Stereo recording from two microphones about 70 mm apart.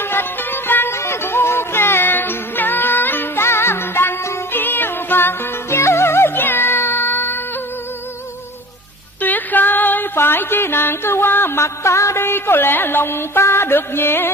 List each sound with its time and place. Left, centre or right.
0.0 s music: left
9.2 s music: left